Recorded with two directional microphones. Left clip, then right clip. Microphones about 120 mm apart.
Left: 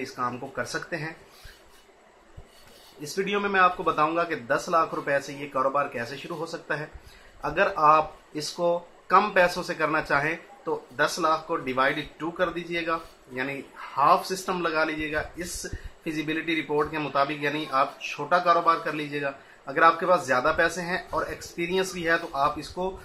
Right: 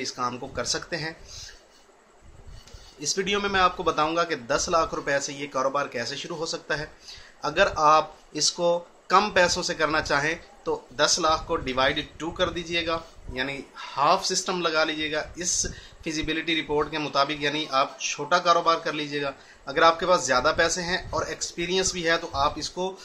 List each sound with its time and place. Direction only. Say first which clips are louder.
0.0 s speech: right 1 dB; 35° right (ahead or behind)
3.0 s speech: right 2 dB; 30° right (ahead or behind)